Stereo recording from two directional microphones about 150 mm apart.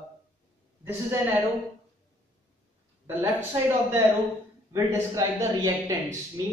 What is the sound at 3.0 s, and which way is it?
A man's voice, 15° right (ahead or behind).